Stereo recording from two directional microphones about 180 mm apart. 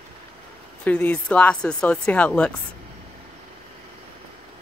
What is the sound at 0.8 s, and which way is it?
Speech, 10° left (ahead or behind).